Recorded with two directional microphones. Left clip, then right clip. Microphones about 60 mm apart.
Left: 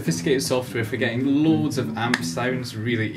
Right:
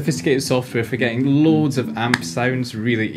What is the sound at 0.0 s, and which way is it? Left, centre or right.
Speech, right.